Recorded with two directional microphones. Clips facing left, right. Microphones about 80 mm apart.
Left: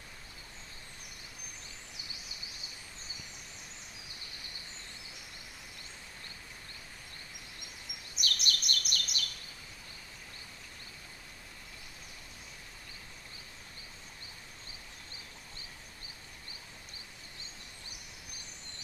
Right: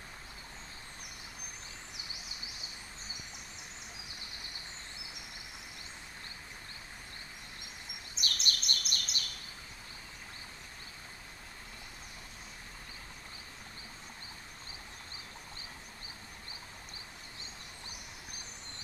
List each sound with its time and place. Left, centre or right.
8.1 s chirp: right